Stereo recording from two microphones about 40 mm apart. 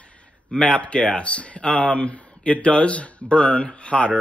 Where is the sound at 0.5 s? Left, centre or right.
Left.